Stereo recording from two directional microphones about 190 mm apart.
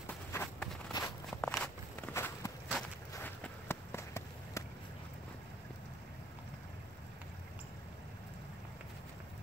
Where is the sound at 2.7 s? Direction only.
5° left (ahead or behind).